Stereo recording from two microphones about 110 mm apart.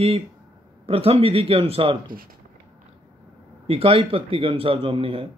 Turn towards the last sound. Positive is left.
turn(degrees=-55)  # may be behind; listen again after turning